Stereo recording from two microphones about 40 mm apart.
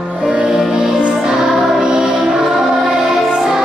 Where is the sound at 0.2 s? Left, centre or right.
Centre.